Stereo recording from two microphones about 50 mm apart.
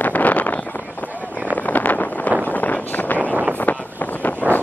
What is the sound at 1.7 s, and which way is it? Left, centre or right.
Wind noise, left.